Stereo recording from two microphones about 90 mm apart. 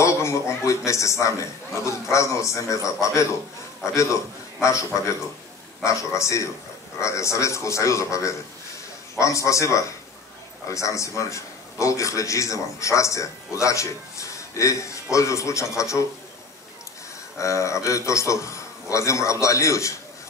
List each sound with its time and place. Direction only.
0.0 s a man's voice: 35° left (ahead or behind)
17.4 s a man's voice: 35° left (ahead or behind)